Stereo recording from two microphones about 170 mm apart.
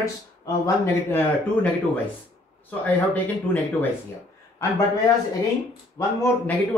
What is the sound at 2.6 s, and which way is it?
Speech, 10° left (ahead or behind).